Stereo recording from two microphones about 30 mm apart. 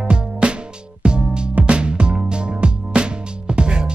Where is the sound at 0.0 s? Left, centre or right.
Right.